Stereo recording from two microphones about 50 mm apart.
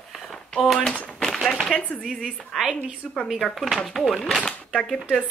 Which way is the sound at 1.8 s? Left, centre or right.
Left.